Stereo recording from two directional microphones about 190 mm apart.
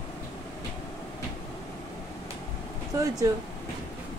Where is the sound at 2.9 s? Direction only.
15° right (ahead or behind).